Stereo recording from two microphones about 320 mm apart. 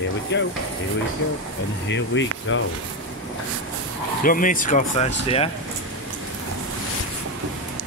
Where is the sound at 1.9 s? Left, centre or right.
Left.